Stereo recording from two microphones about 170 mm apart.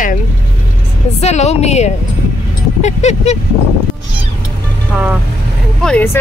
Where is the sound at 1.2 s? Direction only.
40° left (ahead or behind).